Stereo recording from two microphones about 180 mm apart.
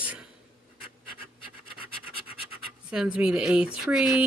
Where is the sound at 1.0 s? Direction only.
30° left (ahead or behind).